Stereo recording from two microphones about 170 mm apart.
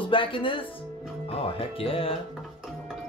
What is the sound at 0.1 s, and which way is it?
Speech, 30° left (ahead or behind).